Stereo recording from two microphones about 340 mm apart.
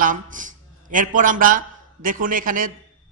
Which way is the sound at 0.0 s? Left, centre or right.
Right.